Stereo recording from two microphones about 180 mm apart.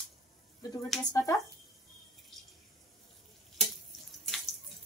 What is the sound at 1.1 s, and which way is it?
Speech, 15° left (ahead or behind).